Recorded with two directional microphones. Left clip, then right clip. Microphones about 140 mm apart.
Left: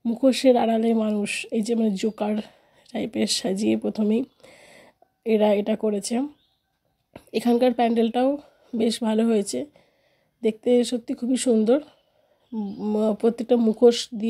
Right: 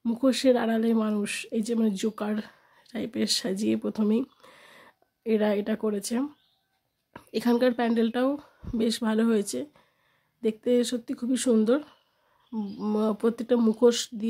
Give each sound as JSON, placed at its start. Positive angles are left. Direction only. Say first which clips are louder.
{"t": 0.0, "sound": "speech", "louder": "left 5 dB", "side_deg": 10}
{"t": 7.1, "sound": "a sound", "louder": "left 4 dB", "side_deg": 10}
{"t": 7.6, "sound": "speech", "louder": "left 6 dB", "side_deg": 15}